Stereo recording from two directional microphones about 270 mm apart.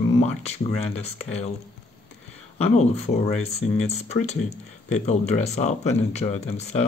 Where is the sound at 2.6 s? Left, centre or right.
Left.